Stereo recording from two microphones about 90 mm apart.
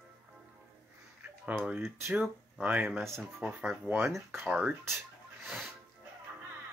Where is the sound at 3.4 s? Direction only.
15° right (ahead or behind).